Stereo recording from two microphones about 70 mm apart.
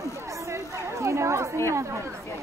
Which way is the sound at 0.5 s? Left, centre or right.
Right.